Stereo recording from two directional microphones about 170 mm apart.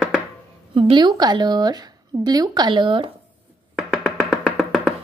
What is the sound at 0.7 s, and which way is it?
Speech, 30° right (ahead or behind).